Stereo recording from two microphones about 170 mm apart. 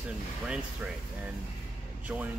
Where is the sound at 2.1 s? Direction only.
5° right (ahead or behind).